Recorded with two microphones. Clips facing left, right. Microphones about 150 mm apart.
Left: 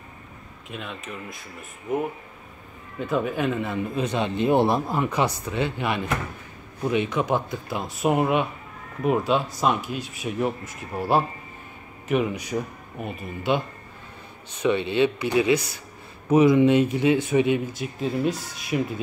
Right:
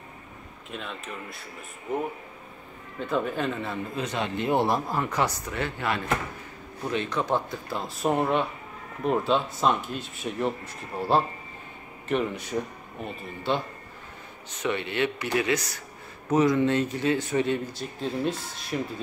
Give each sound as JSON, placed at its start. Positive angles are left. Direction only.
{"t": 0.7, "sound": "speech", "side_deg": 5}
{"t": 3.0, "sound": "a man's voice", "side_deg": 5}
{"t": 14.6, "sound": "a man's voice", "side_deg": 20}